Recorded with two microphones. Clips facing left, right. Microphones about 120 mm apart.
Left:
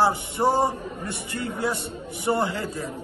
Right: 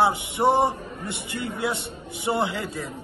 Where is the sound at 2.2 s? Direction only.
25° right (ahead or behind).